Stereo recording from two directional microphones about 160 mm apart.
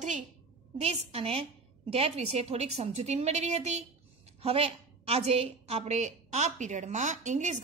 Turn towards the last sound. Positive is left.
turn(degrees=-50)  # may be behind; listen again after turning